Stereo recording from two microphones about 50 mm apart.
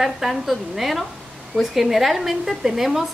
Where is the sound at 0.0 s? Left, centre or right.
Centre.